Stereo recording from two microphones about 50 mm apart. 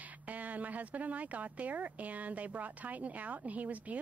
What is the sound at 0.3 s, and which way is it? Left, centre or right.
Speech, right.